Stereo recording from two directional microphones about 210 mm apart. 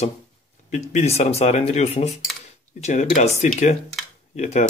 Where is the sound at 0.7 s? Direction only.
35° left (ahead or behind).